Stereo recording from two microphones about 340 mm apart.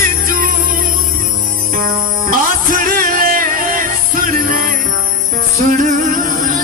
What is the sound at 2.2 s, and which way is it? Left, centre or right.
Music, right.